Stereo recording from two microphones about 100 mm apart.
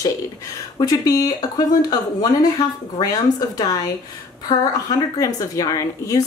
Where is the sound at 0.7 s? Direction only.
40° left (ahead or behind).